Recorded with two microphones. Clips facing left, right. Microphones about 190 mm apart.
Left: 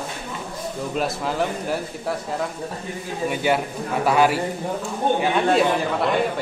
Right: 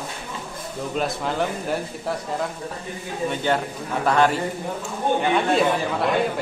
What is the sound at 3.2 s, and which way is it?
A man's voice, 10° left (ahead or behind).